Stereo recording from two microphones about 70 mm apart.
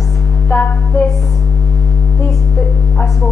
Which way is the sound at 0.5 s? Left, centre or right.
Left.